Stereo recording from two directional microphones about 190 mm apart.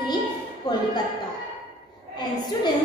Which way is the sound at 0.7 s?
20° left (ahead or behind).